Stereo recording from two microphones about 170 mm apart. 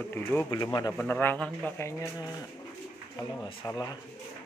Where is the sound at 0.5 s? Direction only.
25° left (ahead or behind).